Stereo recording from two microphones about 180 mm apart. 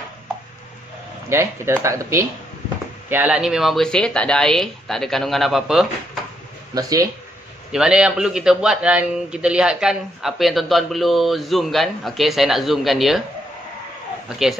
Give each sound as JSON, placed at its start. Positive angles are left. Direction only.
{"t": 1.3, "sound": "a man's voice", "side_deg": -15}
{"t": 6.7, "sound": "speech", "side_deg": -20}
{"t": 7.7, "sound": "a man's voice", "side_deg": -5}